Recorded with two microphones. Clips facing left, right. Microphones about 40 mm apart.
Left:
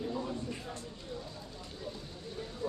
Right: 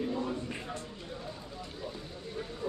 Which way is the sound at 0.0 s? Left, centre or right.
Right.